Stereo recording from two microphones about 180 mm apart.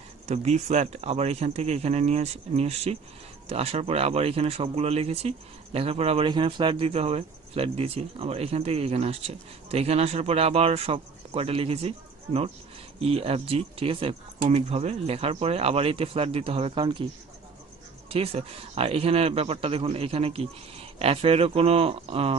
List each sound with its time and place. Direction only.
0.3 s speech: 40° right (ahead or behind)
18.1 s speech: 35° right (ahead or behind)